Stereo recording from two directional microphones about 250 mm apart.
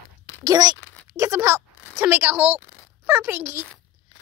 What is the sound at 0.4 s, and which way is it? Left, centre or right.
Speech, centre.